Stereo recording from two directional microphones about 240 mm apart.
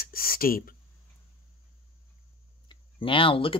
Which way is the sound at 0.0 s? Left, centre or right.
Left.